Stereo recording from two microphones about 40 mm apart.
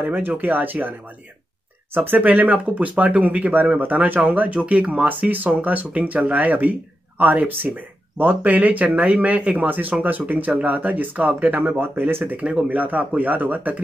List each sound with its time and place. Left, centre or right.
0.1 s speech: right
2.0 s speech: right
5.3 s speech: right
8.5 s speech: right
9.7 s speech: right